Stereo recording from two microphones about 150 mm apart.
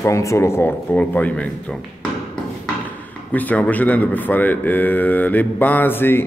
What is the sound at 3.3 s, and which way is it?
Speech, 10° left (ahead or behind).